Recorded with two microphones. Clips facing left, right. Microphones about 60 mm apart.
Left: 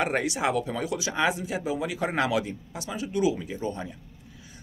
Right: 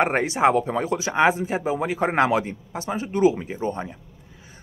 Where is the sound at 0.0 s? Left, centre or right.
Right.